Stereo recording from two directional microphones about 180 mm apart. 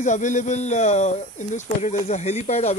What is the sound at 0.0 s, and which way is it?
Speech, 45° left (ahead or behind).